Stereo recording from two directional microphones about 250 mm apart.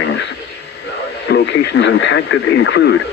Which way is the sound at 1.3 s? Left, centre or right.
Left.